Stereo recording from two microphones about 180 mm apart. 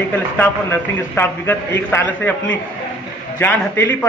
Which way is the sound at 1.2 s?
10° left (ahead or behind).